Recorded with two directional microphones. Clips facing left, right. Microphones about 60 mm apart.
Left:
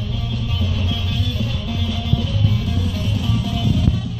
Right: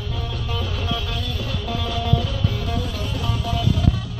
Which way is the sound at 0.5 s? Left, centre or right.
Right.